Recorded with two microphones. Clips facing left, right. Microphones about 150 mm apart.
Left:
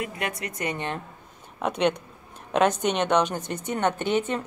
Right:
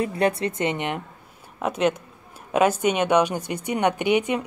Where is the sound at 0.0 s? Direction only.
35° right (ahead or behind).